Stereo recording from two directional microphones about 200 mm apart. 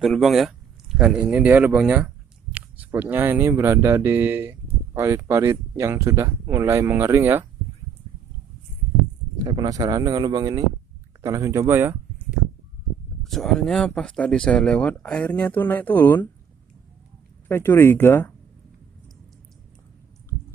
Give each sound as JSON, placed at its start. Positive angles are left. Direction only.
{"t": 0.0, "sound": "speech", "side_deg": 0}
{"t": 9.4, "sound": "speech", "side_deg": -20}
{"t": 13.2, "sound": "speech", "side_deg": 0}
{"t": 17.5, "sound": "speech", "side_deg": 10}